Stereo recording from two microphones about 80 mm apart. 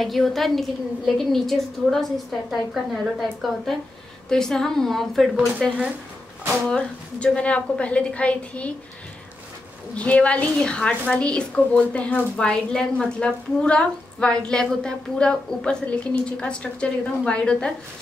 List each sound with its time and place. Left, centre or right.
0.0 s a woman's voice: centre
6.5 s a woman's voice: centre
9.9 s a woman's voice: centre